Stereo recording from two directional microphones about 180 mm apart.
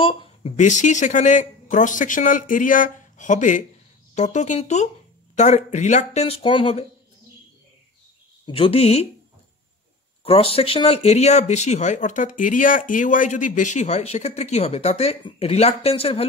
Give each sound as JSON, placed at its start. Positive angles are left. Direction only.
{"t": 0.0, "sound": "speech", "side_deg": 30}
{"t": 8.5, "sound": "speech", "side_deg": 30}
{"t": 10.2, "sound": "speech", "side_deg": 30}